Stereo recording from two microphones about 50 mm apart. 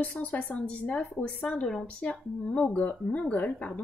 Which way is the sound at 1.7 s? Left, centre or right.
Centre.